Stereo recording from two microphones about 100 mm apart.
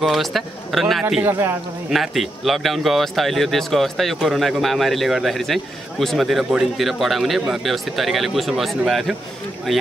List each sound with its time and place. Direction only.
0.0 s speech: centre (ahead or behind)
1.2 s a man's voice: 25° right (ahead or behind)
1.9 s speech: centre (ahead or behind)